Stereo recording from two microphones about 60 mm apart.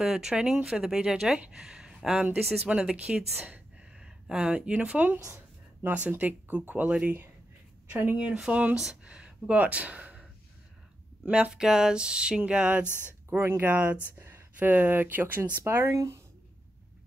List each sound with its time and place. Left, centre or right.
0.0 s speech: centre
3.4 s a sound: centre
5.2 s a sound: right
5.9 s speech: right
7.9 s speech: right
8.2 s speech: centre
11.2 s speech: centre
13.4 s speech: right
13.7 s speech: right
15.6 s speech: right